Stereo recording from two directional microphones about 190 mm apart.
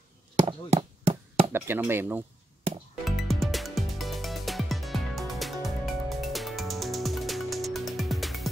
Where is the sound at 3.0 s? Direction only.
Centre (ahead or behind).